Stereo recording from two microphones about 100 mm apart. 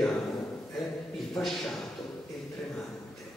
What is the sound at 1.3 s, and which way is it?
Speech, 5° left (ahead or behind).